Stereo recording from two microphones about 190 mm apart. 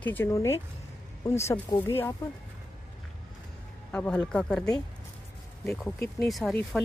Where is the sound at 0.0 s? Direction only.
10° left (ahead or behind).